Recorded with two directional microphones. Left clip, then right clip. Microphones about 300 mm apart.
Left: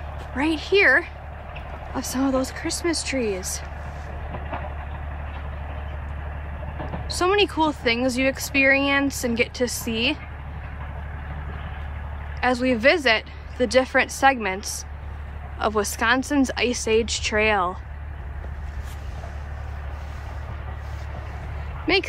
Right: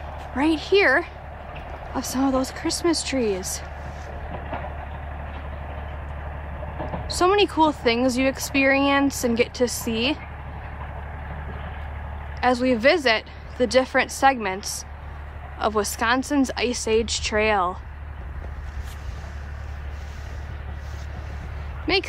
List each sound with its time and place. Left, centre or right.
0.4 s a woman's voice: centre
4.3 s vehicle: right
7.1 s speech: centre
12.4 s a woman's voice: centre
21.9 s speech: centre